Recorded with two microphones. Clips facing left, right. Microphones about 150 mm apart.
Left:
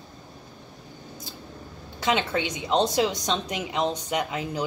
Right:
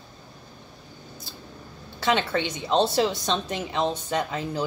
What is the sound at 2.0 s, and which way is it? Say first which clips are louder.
Speech: right 1 dB; 15° left (ahead or behind).